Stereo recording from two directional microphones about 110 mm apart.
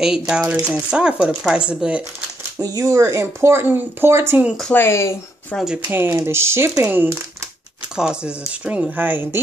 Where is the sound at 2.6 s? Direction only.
35° right (ahead or behind).